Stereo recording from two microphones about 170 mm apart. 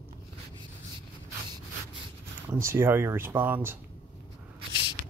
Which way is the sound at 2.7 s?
15° right (ahead or behind).